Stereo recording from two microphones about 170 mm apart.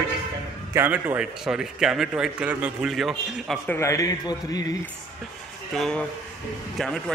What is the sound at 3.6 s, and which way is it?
A man's voice, 15° left (ahead or behind).